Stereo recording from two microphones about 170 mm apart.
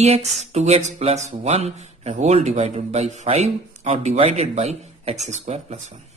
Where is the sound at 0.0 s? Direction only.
40° right (ahead or behind).